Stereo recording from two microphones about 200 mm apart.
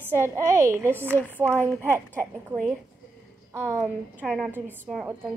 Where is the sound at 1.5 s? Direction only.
10° left (ahead or behind).